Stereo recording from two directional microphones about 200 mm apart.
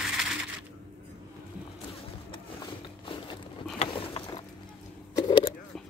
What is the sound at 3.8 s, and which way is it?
Vehicle, 25° left (ahead or behind).